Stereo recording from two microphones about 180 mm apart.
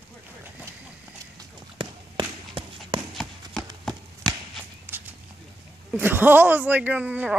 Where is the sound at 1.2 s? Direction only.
25° right (ahead or behind).